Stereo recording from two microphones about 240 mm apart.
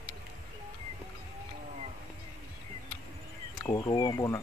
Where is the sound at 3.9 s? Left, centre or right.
Centre.